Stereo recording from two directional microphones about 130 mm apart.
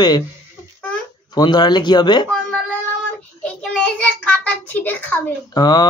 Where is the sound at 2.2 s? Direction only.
5° left (ahead or behind).